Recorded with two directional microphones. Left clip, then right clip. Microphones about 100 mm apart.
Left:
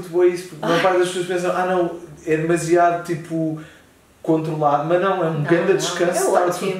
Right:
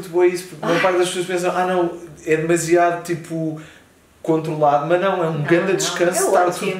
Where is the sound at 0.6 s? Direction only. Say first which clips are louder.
Even; 10° left (ahead or behind).